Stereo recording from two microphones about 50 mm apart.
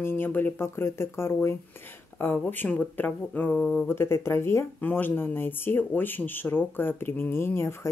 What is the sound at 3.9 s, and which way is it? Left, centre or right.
Speech, left.